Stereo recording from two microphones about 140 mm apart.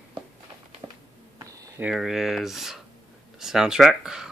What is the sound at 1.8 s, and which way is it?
Speech, centre (ahead or behind).